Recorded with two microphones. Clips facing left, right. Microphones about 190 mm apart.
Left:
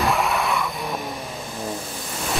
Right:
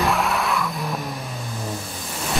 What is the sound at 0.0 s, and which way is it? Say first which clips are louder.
Vehicle: even; centre (ahead or behind).